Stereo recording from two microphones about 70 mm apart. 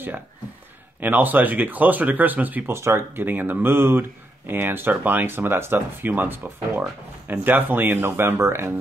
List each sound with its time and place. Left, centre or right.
1.0 s speech: right
2.7 s speech: right
3.3 s speech: right